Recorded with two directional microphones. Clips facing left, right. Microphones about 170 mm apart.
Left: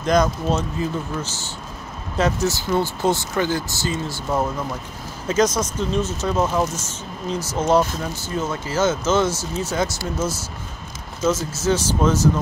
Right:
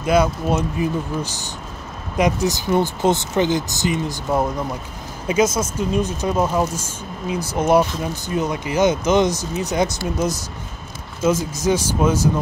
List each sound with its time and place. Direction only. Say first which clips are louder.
0.0 s speech: right 1 dB; 10° right (ahead or behind)